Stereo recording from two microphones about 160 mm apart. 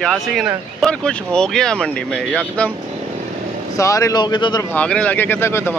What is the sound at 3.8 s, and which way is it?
Speech, 20° left (ahead or behind).